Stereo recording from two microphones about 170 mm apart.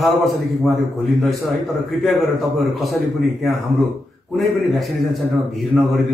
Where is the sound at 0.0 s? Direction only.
Centre (ahead or behind).